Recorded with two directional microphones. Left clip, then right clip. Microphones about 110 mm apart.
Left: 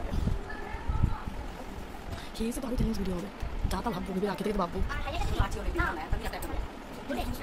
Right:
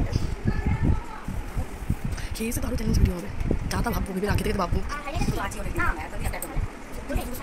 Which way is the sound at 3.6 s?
10° left (ahead or behind).